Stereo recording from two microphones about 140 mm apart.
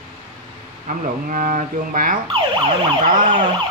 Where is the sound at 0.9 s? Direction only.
65° right (ahead or behind).